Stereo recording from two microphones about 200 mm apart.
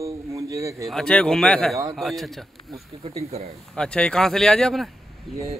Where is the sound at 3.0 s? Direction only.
30° right (ahead or behind).